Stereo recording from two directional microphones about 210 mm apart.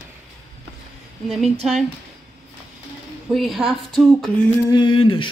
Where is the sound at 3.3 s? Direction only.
Centre (ahead or behind).